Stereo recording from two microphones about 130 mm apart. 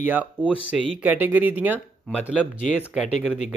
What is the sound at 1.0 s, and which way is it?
Speech, 15° right (ahead or behind).